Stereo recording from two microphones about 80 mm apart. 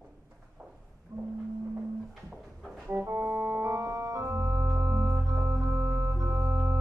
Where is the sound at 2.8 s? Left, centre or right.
Right.